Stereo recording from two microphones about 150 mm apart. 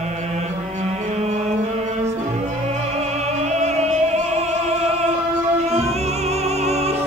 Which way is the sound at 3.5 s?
50° right (ahead or behind).